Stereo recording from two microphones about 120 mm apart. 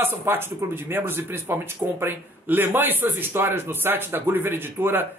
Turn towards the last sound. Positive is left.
turn(degrees=-15)  # may be behind; listen again after turning